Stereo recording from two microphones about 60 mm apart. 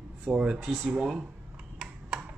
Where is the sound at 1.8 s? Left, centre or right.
Centre.